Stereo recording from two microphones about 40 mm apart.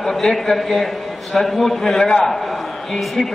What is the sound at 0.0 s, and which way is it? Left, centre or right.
A man's voice, centre.